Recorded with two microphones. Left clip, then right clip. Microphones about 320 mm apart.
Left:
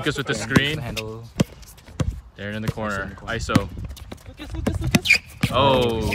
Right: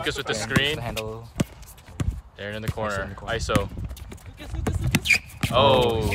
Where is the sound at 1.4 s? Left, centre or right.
Centre.